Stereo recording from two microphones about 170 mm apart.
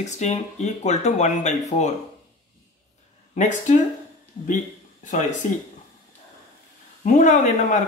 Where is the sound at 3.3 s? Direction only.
45° left (ahead or behind).